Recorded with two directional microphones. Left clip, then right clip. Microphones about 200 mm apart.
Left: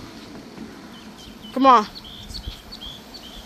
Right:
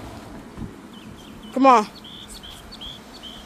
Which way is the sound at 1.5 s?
10° right (ahead or behind).